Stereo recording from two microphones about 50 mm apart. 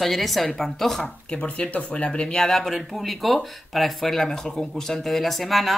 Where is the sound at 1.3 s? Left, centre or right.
Left.